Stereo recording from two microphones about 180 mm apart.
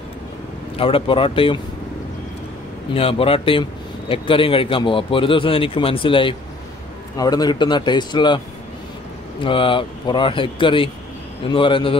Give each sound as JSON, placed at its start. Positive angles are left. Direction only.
{"t": 0.7, "sound": "a man's voice", "side_deg": 30}
{"t": 2.9, "sound": "a man's voice", "side_deg": 30}
{"t": 9.4, "sound": "a man's voice", "side_deg": 30}